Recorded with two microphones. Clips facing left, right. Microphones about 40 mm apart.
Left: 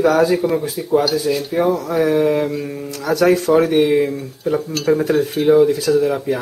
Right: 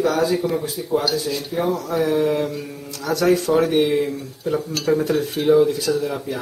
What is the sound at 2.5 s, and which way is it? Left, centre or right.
Speech, centre.